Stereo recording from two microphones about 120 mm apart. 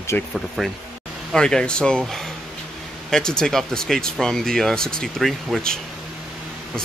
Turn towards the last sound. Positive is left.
turn(degrees=0)  # may be behind; listen again after turning